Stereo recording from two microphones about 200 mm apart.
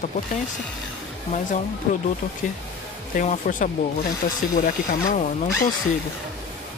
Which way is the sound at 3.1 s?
40° left (ahead or behind).